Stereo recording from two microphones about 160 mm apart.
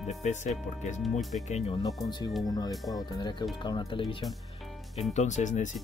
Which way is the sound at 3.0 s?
25° left (ahead or behind).